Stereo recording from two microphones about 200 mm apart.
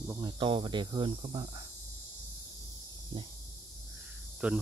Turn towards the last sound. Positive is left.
turn(degrees=-5)  # may be behind; listen again after turning